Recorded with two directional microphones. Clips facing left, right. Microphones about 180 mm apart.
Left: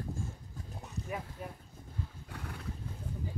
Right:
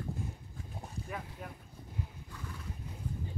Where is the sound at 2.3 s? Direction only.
65° left (ahead or behind).